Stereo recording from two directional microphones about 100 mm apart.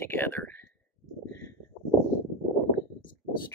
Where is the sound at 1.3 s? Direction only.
30° left (ahead or behind).